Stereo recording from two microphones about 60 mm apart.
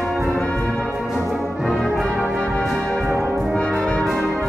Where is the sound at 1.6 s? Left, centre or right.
Centre.